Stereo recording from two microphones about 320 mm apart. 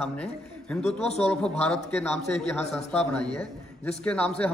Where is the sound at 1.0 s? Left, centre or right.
Centre.